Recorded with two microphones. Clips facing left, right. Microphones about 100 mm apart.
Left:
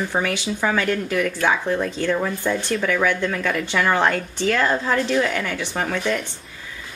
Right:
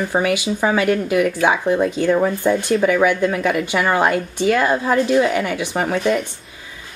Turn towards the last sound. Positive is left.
turn(degrees=-15)  # may be behind; listen again after turning